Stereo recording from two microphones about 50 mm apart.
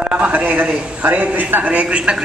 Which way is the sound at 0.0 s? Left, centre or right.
Right.